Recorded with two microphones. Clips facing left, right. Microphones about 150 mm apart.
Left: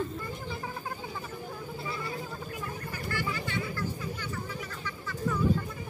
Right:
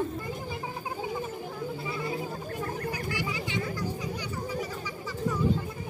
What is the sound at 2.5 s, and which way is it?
Chatter, 40° right (ahead or behind).